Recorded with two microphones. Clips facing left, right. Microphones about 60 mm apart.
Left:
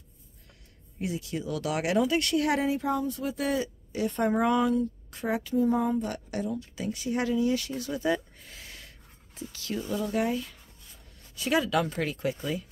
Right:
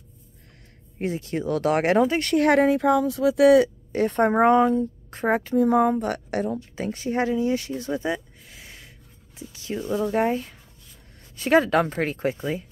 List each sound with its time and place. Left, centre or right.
0.9 s speech: right
2.4 s speech: right
3.9 s a woman's voice: right
5.6 s speech: right
6.7 s speech: right
8.5 s snort: right
9.5 s a woman's voice: right